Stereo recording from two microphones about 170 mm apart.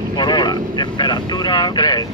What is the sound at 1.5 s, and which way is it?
Boat, 25° left (ahead or behind).